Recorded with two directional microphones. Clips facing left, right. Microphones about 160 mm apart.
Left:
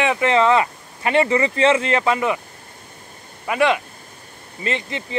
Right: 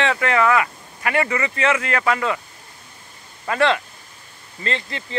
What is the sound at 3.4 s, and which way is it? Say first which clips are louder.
Speech: left 1 dB; 15° left (ahead or behind).